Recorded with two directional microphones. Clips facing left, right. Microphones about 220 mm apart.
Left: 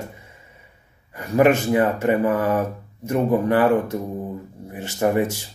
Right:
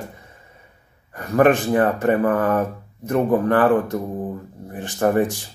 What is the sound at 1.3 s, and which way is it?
Speech, 10° left (ahead or behind).